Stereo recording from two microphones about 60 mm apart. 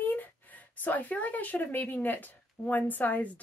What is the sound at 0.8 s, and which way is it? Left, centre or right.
Speech, left.